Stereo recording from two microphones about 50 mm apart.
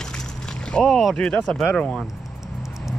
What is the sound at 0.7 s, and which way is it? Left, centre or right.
Speech, centre.